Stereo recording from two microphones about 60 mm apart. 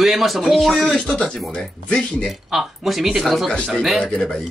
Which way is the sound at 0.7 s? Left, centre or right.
Centre.